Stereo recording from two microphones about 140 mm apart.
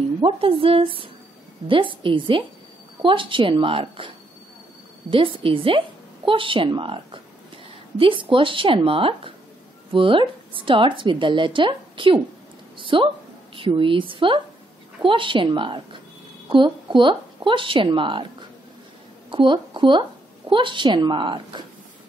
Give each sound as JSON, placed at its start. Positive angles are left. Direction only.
{"t": 0.2, "sound": "a woman's voice", "side_deg": -40}
{"t": 5.1, "sound": "a woman's voice", "side_deg": -40}
{"t": 19.3, "sound": "a woman's voice", "side_deg": -35}